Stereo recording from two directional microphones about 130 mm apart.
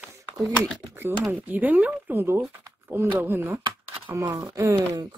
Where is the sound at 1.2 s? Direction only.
10° right (ahead or behind).